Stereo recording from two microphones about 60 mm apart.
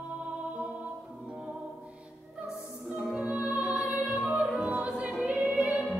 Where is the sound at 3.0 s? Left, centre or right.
Centre.